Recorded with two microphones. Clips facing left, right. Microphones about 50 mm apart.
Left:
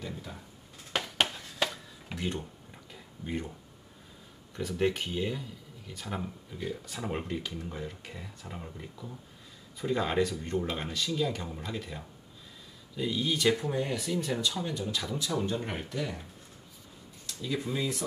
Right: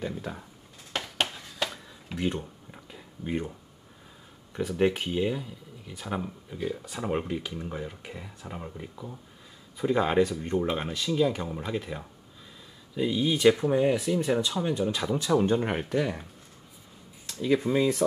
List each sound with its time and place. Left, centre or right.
0.0 s speech: right
0.9 s a sound: centre
4.6 s speech: centre; by 16.0 s right
16.0 s speech: right
17.4 s speech: right